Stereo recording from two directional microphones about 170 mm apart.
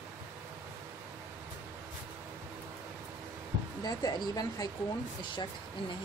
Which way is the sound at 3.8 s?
25° left (ahead or behind).